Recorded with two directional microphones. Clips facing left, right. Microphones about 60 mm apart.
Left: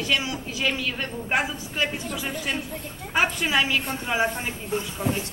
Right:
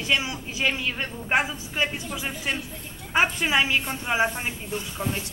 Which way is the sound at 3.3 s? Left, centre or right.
Right.